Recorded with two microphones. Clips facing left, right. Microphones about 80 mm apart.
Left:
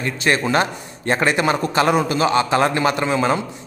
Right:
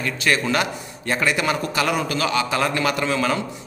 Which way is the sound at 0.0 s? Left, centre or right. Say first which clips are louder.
Left 2 dB; left.